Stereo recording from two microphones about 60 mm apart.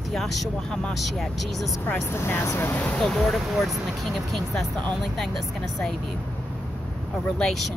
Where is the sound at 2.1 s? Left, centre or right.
Left.